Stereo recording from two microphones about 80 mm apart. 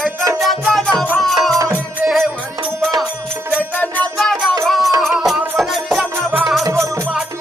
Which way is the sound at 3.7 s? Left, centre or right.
Centre.